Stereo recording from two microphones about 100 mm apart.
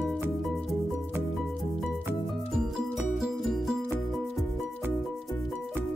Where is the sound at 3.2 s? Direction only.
5° right (ahead or behind).